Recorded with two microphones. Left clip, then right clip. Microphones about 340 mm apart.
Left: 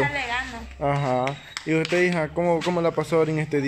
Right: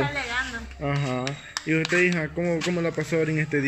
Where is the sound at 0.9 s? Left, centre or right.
Left.